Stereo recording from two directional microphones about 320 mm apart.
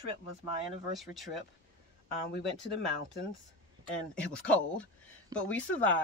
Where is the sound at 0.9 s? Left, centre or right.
Centre.